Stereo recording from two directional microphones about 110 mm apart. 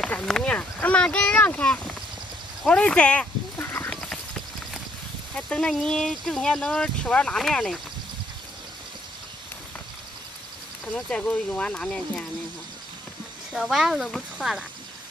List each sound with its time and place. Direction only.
0.0 s speech: 5° left (ahead or behind)
3.6 s livestock: 20° left (ahead or behind)
3.9 s clip-clop: 10° left (ahead or behind)
5.3 s speech: 5° left (ahead or behind)
10.9 s speech: 10° left (ahead or behind)
13.5 s speech: 5° right (ahead or behind)